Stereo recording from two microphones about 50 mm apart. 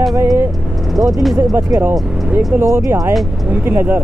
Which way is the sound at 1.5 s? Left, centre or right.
Right.